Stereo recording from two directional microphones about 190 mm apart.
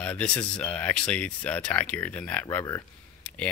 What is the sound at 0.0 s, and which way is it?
Speech, 5° left (ahead or behind).